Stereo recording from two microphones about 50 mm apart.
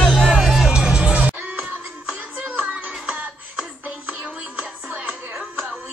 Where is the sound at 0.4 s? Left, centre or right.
Centre.